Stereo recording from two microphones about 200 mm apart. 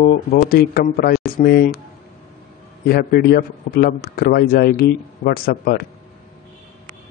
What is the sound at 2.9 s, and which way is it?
Speech, 50° left (ahead or behind).